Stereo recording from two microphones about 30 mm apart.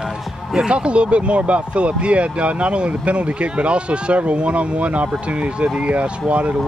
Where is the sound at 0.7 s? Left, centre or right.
Right.